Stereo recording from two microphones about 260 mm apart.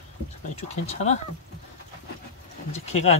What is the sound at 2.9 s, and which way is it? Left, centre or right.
Speech, left.